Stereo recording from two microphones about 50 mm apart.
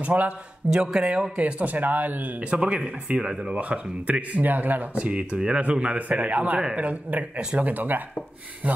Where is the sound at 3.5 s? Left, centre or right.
Right.